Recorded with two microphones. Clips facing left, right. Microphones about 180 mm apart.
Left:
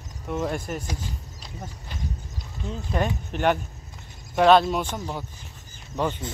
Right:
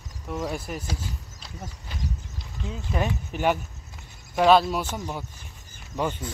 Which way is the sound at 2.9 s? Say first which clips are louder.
Left 1 dB; 5° right (ahead or behind).